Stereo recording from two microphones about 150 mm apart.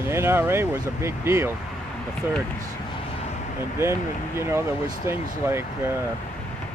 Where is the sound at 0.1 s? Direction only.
15° right (ahead or behind).